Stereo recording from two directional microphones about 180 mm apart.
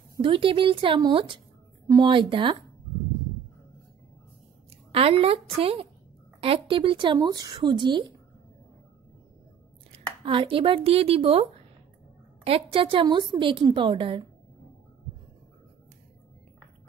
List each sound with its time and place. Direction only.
0.2 s a woman's voice: 30° right (ahead or behind)
4.9 s a woman's voice: 35° right (ahead or behind)
10.2 s a woman's voice: 30° right (ahead or behind)
12.4 s a woman's voice: 30° right (ahead or behind)